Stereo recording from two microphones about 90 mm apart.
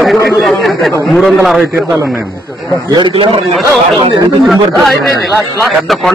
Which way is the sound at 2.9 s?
60° right (ahead or behind).